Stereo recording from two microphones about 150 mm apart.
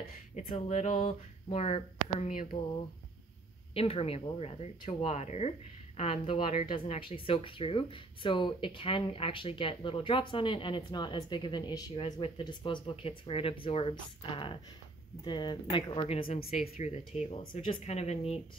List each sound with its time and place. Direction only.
0.4 s speech: 50° left (ahead or behind)
3.7 s speech: 40° left (ahead or behind)
17.4 s speech: 30° left (ahead or behind)
17.8 s speech: 45° left (ahead or behind)